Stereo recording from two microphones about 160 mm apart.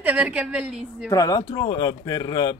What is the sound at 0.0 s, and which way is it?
A woman's voice, 10° right (ahead or behind).